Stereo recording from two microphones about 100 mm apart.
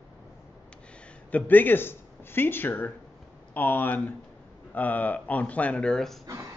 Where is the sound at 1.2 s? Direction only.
15° left (ahead or behind).